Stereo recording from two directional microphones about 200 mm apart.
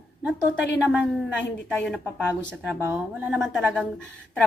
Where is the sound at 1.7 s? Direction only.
Centre (ahead or behind).